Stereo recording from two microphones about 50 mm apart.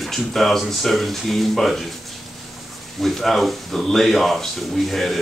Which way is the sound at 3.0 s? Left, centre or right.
Centre.